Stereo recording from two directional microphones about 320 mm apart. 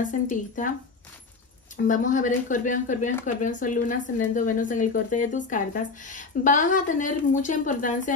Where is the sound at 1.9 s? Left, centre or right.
Left.